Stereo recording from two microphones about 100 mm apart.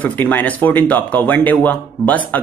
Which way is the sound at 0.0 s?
20° left (ahead or behind).